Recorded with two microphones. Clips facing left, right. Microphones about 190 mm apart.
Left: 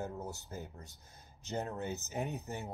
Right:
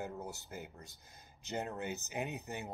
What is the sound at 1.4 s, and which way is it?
Speech, 15° right (ahead or behind).